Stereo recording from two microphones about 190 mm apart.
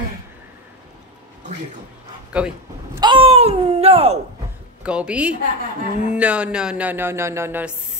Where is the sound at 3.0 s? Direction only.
25° right (ahead or behind).